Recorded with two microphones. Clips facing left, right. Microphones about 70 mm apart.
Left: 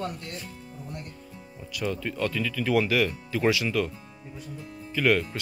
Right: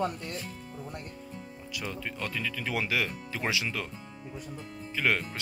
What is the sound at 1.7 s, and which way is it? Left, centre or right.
Speech, centre.